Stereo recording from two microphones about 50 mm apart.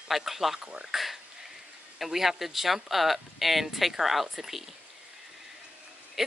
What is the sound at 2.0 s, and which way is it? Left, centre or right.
Speech, centre.